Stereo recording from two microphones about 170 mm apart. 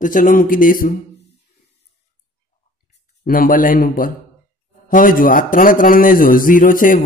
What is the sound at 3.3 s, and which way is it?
A man's voice, 55° left (ahead or behind).